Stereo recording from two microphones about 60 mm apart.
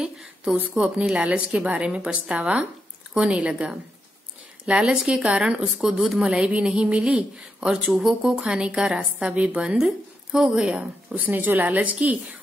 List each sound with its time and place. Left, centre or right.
0.0 s a sound: centre
0.6 s a woman's voice: right
10.7 s speech: right